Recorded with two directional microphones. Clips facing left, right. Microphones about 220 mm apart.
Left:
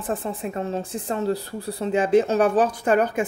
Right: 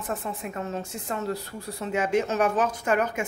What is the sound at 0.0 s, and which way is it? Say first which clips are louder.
Speech: left 5 dB; 30° left (ahead or behind).